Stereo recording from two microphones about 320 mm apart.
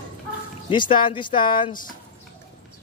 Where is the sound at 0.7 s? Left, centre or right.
Centre.